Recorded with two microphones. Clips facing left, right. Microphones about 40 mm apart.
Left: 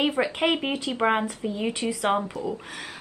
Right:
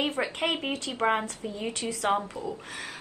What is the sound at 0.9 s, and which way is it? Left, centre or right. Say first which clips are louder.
Speech: left 3 dB; centre.